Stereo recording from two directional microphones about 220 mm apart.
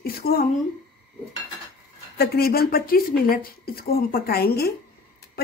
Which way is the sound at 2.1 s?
45° left (ahead or behind).